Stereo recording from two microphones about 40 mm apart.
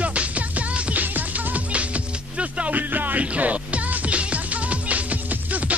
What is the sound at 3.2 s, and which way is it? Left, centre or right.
Music, right.